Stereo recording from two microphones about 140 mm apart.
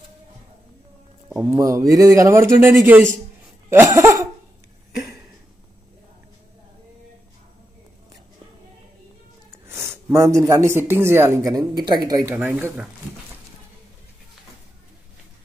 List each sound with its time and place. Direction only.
1.3 s speech: 10° right (ahead or behind)
1.6 s a man's voice: 25° right (ahead or behind)
3.7 s laughter: 20° right (ahead or behind)
9.7 s a sound: 15° right (ahead or behind)
10.1 s a man's voice: 20° right (ahead or behind)
12.3 s speech: 15° right (ahead or behind)